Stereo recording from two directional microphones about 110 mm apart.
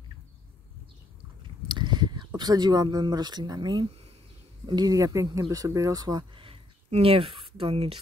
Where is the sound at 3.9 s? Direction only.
65° right (ahead or behind).